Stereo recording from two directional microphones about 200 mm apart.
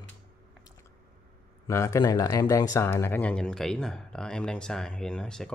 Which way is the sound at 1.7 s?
15° left (ahead or behind).